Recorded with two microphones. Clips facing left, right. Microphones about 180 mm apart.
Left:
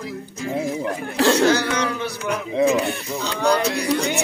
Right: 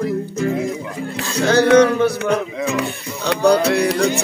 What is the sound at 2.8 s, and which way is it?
Music, 65° right (ahead or behind).